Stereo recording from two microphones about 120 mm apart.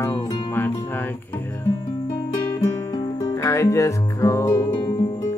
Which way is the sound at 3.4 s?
25° left (ahead or behind).